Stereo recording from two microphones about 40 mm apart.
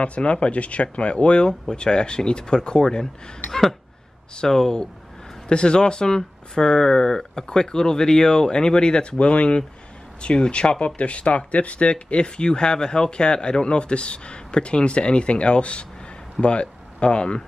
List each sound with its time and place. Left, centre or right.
0.0 s speech: left
4.4 s speech: centre